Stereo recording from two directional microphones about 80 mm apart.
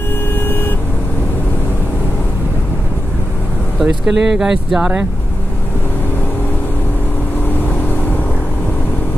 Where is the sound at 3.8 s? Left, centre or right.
Centre.